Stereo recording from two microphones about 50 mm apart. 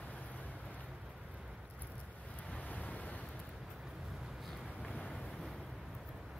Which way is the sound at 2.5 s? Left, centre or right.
Left.